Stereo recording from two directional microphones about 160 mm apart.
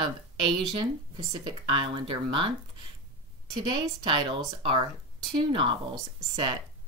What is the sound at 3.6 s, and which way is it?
A woman's voice, 25° right (ahead or behind).